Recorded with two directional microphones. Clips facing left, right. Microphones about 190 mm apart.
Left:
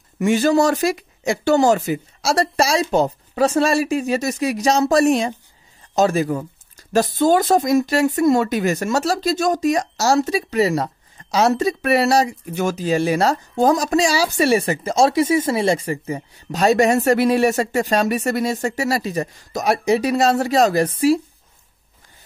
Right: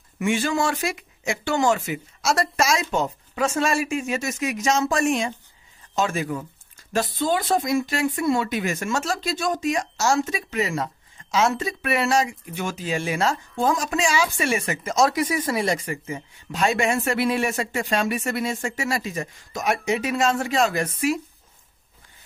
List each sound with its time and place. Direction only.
0.2 s speech: 40° left (ahead or behind)